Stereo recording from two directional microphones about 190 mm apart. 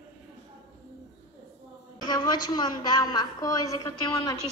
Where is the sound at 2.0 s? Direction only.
20° left (ahead or behind).